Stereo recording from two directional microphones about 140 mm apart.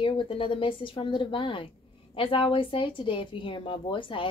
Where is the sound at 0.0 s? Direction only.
40° left (ahead or behind).